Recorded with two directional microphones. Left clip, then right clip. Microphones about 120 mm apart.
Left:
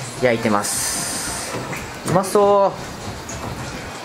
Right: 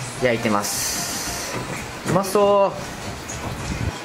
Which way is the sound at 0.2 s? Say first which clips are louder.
Left 2 dB; 20° left (ahead or behind).